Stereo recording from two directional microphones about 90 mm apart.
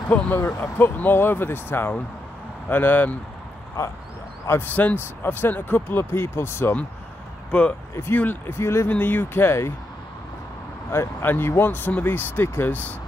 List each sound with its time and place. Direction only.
0.4 s speech: 25° left (ahead or behind)
3.8 s a sound: 35° left (ahead or behind)
4.5 s speech: 20° left (ahead or behind)
10.9 s speech: 25° left (ahead or behind)